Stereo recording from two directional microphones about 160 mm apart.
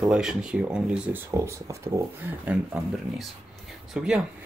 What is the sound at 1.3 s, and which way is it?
Speech, 15° right (ahead or behind).